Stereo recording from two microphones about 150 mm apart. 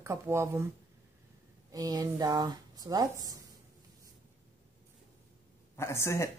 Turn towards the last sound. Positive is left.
turn(degrees=20)  # may be behind; listen again after turning